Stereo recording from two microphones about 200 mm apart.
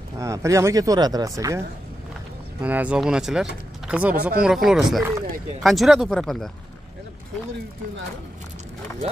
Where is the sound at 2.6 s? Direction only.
10° right (ahead or behind).